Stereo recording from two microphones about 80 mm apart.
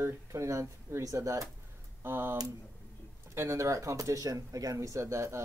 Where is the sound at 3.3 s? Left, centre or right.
Right.